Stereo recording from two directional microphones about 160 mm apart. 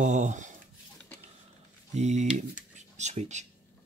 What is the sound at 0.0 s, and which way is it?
Speech, 50° right (ahead or behind).